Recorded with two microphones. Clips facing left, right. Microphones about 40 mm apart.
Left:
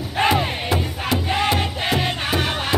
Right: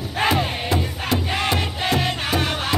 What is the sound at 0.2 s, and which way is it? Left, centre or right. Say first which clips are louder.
Music: left 2 dB; centre.